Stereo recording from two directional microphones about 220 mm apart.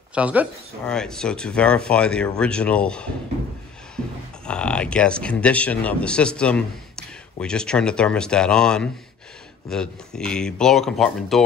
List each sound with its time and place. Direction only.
0.1 s speech: 5° right (ahead or behind)
4.5 s speech: 5° left (ahead or behind)